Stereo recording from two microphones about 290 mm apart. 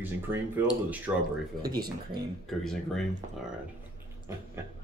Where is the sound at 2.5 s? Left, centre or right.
Centre.